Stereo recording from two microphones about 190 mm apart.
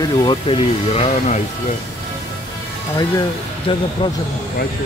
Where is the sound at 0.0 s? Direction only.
25° left (ahead or behind).